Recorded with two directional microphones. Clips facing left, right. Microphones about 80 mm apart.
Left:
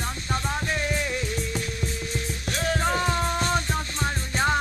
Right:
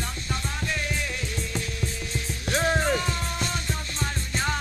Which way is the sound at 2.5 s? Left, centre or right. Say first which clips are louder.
Right 3 dB; right.